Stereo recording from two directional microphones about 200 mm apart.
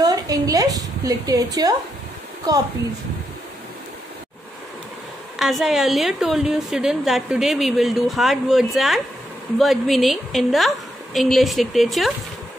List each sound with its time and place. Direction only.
0.0 s a woman's voice: 20° right (ahead or behind)
5.4 s a woman's voice: centre (ahead or behind)